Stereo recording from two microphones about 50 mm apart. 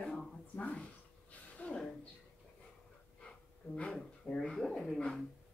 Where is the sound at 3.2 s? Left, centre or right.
Left.